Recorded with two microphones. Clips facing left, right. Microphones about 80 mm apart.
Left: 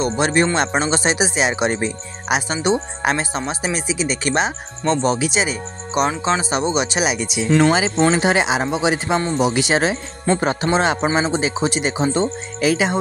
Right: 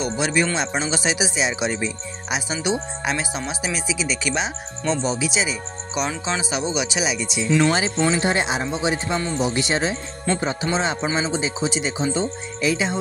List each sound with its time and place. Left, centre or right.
0.0 s speech: left
8.1 s speech: left
10.4 s speech: left